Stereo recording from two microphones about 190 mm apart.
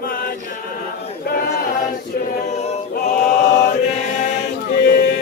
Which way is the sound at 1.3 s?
50° left (ahead or behind).